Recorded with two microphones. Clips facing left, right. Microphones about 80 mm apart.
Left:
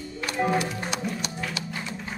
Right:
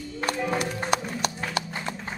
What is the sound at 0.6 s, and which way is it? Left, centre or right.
Music, right.